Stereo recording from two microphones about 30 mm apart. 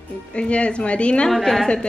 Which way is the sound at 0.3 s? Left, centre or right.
Left.